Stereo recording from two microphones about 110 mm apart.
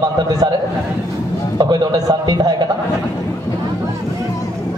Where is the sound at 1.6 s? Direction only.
40° right (ahead or behind).